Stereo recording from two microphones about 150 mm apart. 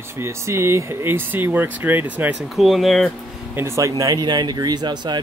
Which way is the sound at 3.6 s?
20° right (ahead or behind).